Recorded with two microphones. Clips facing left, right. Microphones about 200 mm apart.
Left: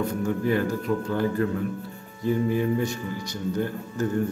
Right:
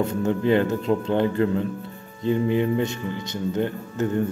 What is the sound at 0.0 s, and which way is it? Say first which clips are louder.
Speech: right 3 dB; 25° right (ahead or behind).